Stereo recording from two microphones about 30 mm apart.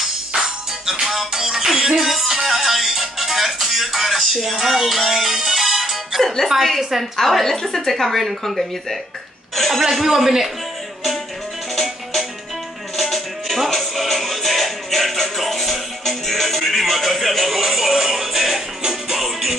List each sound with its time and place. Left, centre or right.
0.4 s music: centre
7.2 s a woman's voice: centre
9.9 s music: centre
12.9 s music: centre
16.5 s a woman's voice: centre
17.6 s music: centre
19.1 s music: centre